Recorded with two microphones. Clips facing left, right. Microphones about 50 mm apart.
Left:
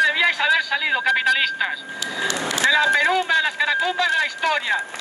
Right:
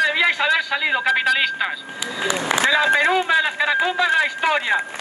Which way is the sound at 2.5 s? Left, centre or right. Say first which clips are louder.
Right 7 dB; right.